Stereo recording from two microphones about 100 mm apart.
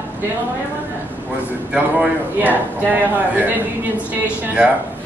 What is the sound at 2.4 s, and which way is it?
A woman's voice, 20° right (ahead or behind).